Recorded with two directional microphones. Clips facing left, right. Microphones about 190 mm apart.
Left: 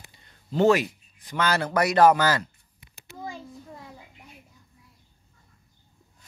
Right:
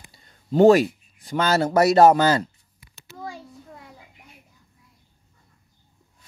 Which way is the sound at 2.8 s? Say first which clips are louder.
Right 1 dB; 50° left (ahead or behind).